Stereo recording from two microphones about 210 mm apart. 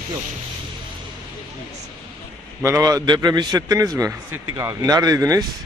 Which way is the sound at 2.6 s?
15° right (ahead or behind).